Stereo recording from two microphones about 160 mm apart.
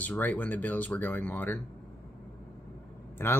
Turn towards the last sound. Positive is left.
turn(degrees=15)  # may be behind; listen again after turning